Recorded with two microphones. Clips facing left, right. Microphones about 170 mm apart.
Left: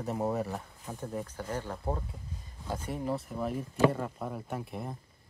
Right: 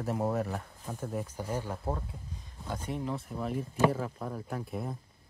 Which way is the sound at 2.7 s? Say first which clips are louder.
Left 1 dB; 5° left (ahead or behind).